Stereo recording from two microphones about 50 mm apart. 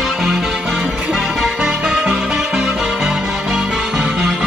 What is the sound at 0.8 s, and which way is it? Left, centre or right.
Music, right.